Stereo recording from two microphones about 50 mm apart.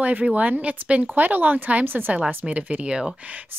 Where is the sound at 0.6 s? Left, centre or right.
Right.